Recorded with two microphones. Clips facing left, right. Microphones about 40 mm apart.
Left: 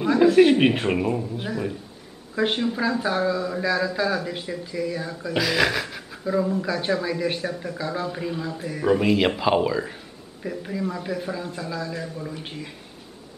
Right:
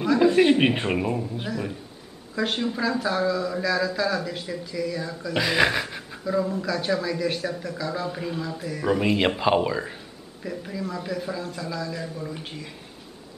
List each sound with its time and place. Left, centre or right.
0.2 s a woman's voice: centre
2.3 s a man's voice: centre
5.4 s speech: centre
6.2 s a man's voice: centre
6.6 s a man's voice: centre
8.8 s a woman's voice: centre
10.4 s a man's voice: centre